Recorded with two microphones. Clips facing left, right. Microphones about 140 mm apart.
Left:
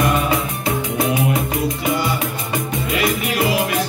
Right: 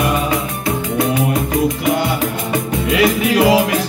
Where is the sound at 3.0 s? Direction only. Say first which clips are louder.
Right 7 dB; 90° right.